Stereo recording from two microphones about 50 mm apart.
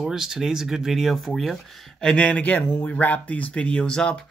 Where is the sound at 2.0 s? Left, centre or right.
Centre.